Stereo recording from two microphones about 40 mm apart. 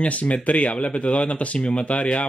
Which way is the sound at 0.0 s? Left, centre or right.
Left.